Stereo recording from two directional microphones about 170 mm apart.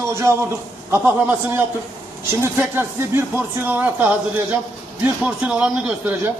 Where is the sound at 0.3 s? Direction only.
15° right (ahead or behind).